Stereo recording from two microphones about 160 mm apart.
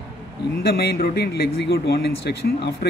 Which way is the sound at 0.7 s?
85° left.